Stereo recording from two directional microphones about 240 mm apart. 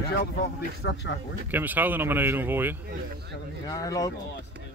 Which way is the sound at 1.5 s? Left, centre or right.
Centre.